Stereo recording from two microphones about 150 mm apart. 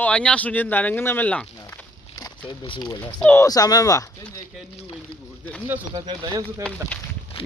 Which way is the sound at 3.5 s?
25° left (ahead or behind).